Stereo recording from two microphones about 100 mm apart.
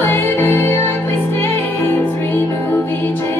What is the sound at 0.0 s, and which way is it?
Music, 20° left (ahead or behind).